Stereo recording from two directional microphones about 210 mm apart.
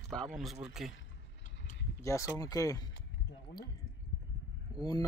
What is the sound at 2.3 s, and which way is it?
Speech, 15° left (ahead or behind).